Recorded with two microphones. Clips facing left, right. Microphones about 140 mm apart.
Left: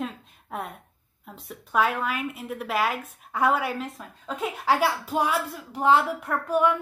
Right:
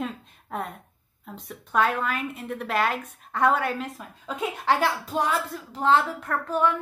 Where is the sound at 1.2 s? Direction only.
Centre (ahead or behind).